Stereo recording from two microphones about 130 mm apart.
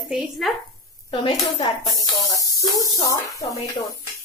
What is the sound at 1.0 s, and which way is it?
Speech, 40° left (ahead or behind).